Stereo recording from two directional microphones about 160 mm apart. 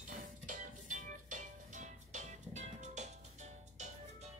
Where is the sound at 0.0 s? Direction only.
55° right (ahead or behind).